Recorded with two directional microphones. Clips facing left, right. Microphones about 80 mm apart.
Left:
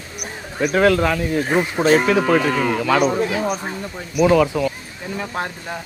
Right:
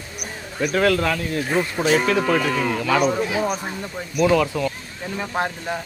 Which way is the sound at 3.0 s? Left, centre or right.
Centre.